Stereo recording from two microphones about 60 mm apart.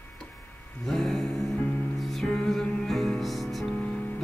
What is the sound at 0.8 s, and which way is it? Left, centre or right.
Music, centre.